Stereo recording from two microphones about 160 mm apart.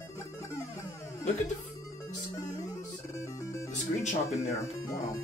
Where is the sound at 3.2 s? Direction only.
20° left (ahead or behind).